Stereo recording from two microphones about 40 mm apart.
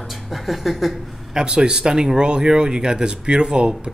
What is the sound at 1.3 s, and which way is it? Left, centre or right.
Speech, centre.